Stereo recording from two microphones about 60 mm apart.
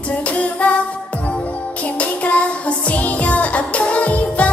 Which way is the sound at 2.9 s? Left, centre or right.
Left.